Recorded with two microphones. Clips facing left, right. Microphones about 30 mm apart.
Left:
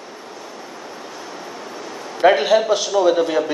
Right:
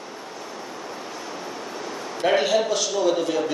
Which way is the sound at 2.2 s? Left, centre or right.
Centre.